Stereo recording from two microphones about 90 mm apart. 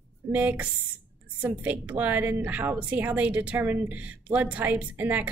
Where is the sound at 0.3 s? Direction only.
20° right (ahead or behind).